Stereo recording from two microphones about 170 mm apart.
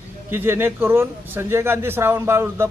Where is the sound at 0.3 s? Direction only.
15° right (ahead or behind).